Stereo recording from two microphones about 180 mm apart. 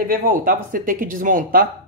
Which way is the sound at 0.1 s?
55° right (ahead or behind).